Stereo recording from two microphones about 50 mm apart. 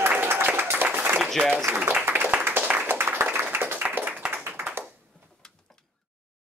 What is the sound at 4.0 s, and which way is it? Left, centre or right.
Clapping, right.